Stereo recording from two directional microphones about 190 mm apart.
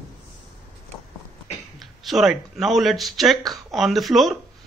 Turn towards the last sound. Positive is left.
turn(degrees=0)  # may be behind; listen again after turning